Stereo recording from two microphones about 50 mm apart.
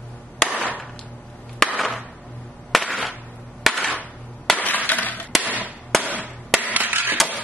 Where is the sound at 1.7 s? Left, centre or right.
Centre.